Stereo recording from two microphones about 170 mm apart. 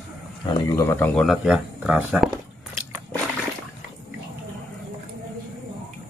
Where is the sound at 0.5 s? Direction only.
15° left (ahead or behind).